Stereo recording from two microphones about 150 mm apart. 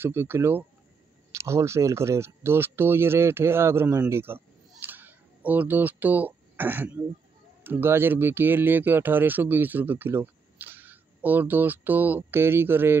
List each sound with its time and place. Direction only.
0.0 s speech: 15° right (ahead or behind)
4.8 s a sound: 10° right (ahead or behind)
7.6 s speech: 15° right (ahead or behind)